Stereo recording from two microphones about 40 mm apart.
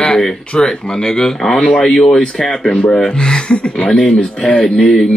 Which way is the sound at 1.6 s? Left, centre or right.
Left.